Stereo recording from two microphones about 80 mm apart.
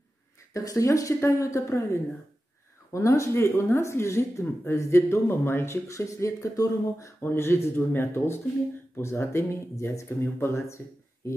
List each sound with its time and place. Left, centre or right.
0.5 s speech: left